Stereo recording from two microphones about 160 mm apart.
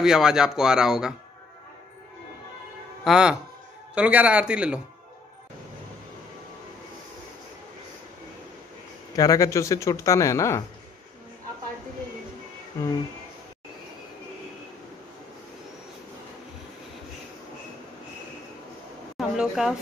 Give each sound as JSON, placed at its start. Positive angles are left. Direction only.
{"t": 0.0, "sound": "speech", "side_deg": -5}
{"t": 3.0, "sound": "speech", "side_deg": -5}
{"t": 9.1, "sound": "speech", "side_deg": 20}
{"t": 19.1, "sound": "a sound", "side_deg": 0}